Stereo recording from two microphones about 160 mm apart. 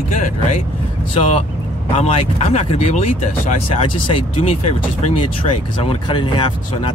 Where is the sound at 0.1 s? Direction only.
50° left (ahead or behind).